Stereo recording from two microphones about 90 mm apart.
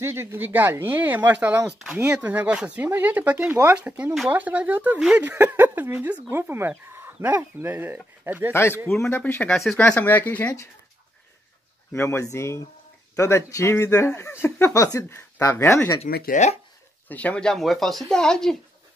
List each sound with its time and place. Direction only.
0.0 s speech: 25° right (ahead or behind)
8.5 s speech: 25° left (ahead or behind)
8.8 s speech: 10° left (ahead or behind)
9.1 s speech: 20° left (ahead or behind)
11.9 s speech: 30° left (ahead or behind)
17.1 s speech: 15° left (ahead or behind)